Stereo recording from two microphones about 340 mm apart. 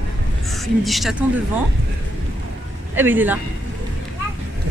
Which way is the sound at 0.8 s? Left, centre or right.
Centre.